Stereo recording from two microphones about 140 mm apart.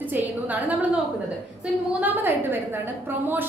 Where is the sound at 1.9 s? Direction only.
15° right (ahead or behind).